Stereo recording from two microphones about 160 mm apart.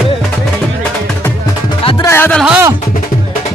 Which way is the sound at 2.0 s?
15° left (ahead or behind).